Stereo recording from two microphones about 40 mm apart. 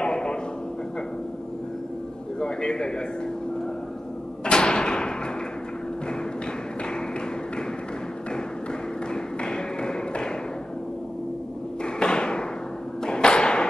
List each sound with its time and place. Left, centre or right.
0.0 s a sound: left
2.4 s a man's voice: left
4.5 s door: left
9.1 s thump: left
11.8 s a sound: left
13.0 s thump: left